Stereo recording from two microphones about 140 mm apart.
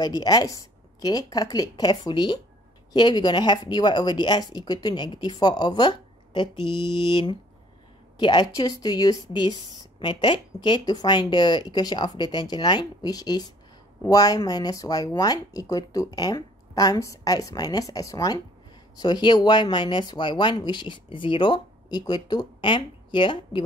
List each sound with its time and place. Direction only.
0.0 s speech: 25° left (ahead or behind)